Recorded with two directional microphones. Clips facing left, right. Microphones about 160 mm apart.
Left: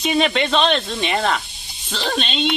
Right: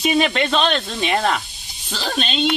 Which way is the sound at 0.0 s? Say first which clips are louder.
Even; centre (ahead or behind).